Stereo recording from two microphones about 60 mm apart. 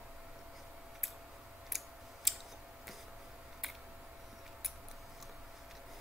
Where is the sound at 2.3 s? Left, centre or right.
Centre.